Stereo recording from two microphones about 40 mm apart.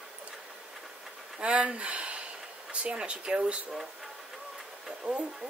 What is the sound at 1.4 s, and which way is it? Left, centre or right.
Speech, right.